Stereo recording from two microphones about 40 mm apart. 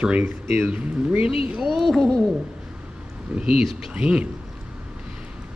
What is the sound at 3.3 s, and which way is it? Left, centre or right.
Speech, right.